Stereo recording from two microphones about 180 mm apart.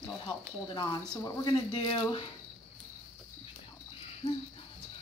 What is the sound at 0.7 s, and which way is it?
Speech, 20° left (ahead or behind).